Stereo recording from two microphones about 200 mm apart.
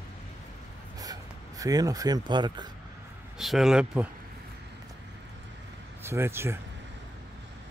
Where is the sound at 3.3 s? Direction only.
Centre (ahead or behind).